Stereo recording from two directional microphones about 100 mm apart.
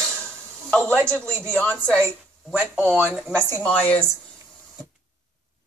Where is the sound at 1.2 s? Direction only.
25° right (ahead or behind).